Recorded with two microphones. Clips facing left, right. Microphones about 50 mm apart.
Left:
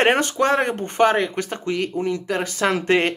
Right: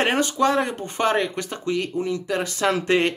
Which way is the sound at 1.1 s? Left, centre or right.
Left.